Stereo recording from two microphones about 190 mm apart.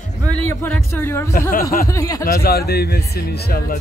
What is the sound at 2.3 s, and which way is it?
Speech, 55° left (ahead or behind).